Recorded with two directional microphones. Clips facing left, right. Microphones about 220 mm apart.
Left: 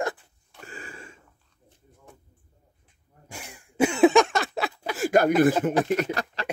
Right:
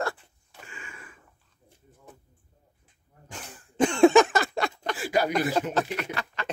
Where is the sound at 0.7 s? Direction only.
35° left (ahead or behind).